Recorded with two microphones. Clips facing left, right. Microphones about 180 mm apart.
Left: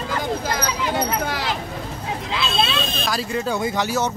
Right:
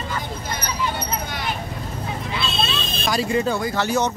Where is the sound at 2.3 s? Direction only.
90° left.